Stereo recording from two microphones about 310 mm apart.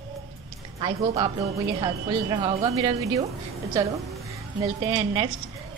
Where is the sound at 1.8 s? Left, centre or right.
Centre.